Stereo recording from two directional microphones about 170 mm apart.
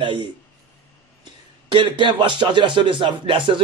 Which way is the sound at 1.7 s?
30° right (ahead or behind).